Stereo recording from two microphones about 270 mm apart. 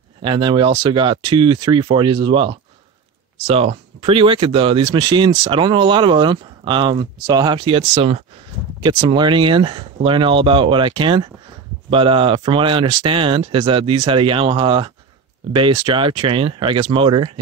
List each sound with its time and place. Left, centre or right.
0.2 s speech: centre